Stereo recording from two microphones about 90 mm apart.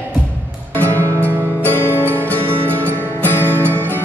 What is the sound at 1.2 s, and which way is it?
Music, 25° right (ahead or behind).